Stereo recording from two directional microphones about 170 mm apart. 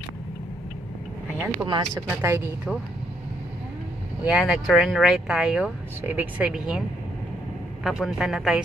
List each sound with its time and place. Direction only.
1.7 s speech: 20° right (ahead or behind)
4.2 s speech: 5° right (ahead or behind)
7.8 s speech: centre (ahead or behind)